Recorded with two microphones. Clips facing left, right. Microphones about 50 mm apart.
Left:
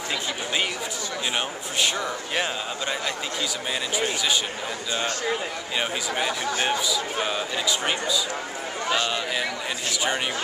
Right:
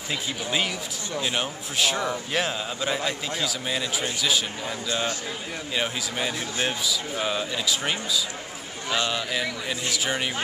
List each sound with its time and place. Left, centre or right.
1.3 s a man's voice: centre
5.8 s a man's voice: centre